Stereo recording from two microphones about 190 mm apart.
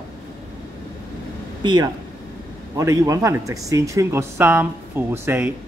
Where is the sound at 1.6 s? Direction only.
20° right (ahead or behind).